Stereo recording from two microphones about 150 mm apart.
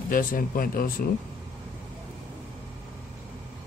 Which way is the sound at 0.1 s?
70° left (ahead or behind).